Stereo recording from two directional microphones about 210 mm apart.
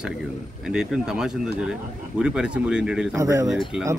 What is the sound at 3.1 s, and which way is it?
Speech, 15° right (ahead or behind).